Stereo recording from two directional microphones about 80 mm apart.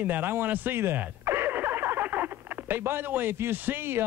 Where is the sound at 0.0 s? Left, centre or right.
Right.